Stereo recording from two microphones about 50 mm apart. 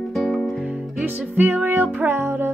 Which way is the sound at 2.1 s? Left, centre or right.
Right.